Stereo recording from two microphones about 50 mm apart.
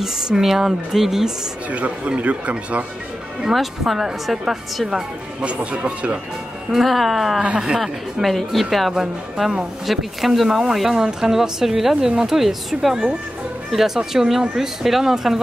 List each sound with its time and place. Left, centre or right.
0.0 s speech: centre
1.7 s speech: right
3.4 s speech: centre
5.4 s speech: right
6.7 s speech: centre
7.5 s speech: centre
7.8 s speech: centre